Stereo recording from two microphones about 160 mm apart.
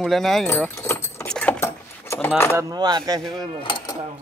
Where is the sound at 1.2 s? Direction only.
5° left (ahead or behind).